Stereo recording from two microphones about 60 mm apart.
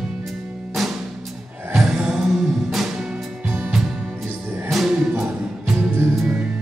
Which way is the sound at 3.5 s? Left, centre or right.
Right.